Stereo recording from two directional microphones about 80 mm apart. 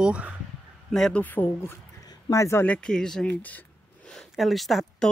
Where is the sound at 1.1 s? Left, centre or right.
Left.